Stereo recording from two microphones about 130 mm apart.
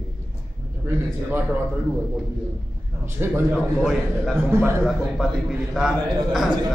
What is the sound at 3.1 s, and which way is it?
Speech, 15° right (ahead or behind).